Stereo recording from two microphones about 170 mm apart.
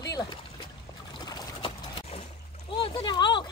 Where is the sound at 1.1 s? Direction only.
25° left (ahead or behind).